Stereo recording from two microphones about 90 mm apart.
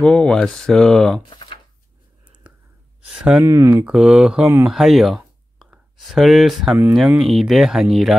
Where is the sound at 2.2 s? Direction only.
15° right (ahead or behind).